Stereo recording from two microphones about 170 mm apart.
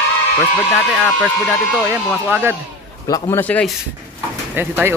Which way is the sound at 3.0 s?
20° left (ahead or behind).